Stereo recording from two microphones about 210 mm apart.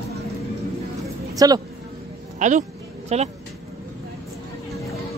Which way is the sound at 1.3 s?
15° right (ahead or behind).